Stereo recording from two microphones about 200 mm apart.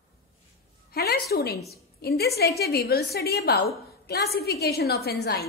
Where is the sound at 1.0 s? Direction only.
50° left (ahead or behind).